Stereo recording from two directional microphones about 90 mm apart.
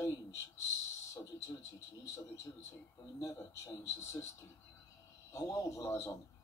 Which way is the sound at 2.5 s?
30° left (ahead or behind).